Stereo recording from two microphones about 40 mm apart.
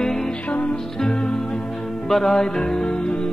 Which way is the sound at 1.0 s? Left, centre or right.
Left.